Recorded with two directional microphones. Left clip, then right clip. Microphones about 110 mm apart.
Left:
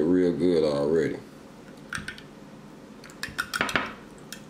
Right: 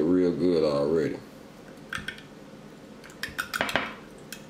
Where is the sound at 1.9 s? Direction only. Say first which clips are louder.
Even; 15° left (ahead or behind).